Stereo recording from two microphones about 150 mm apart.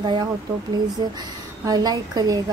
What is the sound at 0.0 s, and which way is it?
Speech, 30° right (ahead or behind).